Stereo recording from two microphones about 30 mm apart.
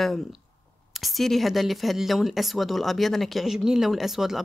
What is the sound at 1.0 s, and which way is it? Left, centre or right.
A woman's voice, centre.